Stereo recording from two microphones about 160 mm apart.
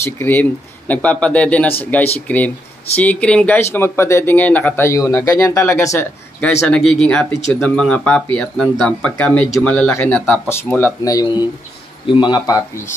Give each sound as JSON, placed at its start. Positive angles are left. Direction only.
{"t": 0.0, "sound": "speech", "side_deg": 15}
{"t": 6.7, "sound": "speech", "side_deg": 0}